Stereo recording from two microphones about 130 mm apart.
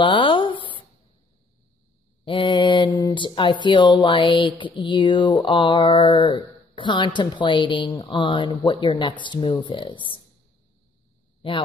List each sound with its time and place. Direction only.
0.0 s a sound: 40° left (ahead or behind)
2.2 s mantra: 40° left (ahead or behind)
3.6 s speech: 35° left (ahead or behind)